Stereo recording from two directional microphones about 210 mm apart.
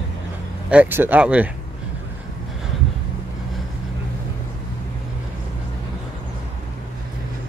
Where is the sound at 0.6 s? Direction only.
10° right (ahead or behind).